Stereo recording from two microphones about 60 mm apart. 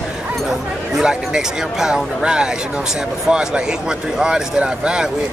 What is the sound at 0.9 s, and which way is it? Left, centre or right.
Speech, centre.